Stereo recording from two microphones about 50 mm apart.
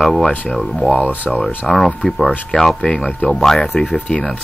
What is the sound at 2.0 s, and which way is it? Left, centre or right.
Speech, left.